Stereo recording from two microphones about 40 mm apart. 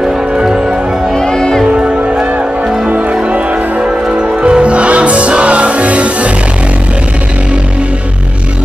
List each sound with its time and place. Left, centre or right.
0.0 s music: centre
1.1 s music: centre
1.7 s music: right